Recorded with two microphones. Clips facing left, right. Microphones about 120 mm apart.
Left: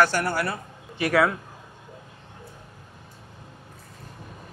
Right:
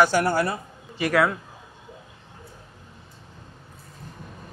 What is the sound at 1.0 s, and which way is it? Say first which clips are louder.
Speech: even; centre (ahead or behind).